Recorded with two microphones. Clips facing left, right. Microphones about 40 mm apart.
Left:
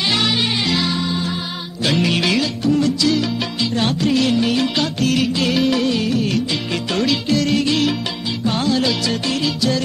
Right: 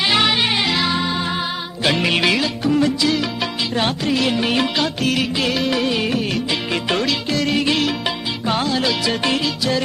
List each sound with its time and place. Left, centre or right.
0.1 s music: centre
1.9 s music: right
4.4 s music: right
4.7 s music: centre
5.8 s music: centre
7.0 s music: centre